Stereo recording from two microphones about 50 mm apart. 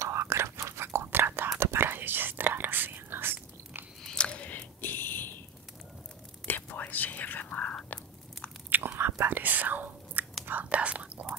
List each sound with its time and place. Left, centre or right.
0.0 s whispering: right
1.2 s whispering: right
4.0 s biting: centre
4.3 s a sound: left
4.8 s fire alarm: left
6.4 s whispering: left
7.9 s biting: left
8.6 s whispering: right